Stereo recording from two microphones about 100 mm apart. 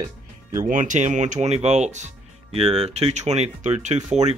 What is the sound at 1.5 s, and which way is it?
Speech, 90° right.